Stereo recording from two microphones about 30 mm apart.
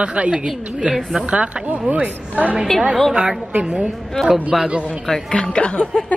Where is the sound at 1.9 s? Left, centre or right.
Right.